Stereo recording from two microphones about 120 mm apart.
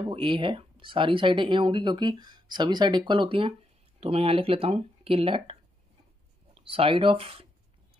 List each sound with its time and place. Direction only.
0.1 s speech: 45° right (ahead or behind)